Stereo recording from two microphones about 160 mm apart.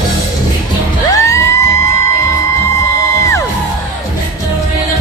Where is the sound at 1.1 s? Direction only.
20° left (ahead or behind).